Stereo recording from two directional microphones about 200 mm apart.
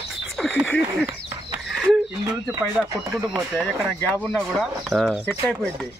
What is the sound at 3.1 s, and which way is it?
Speech, centre (ahead or behind).